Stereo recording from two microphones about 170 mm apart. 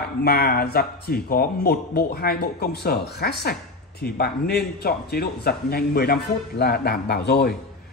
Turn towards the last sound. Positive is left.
turn(degrees=70)  # may be behind; listen again after turning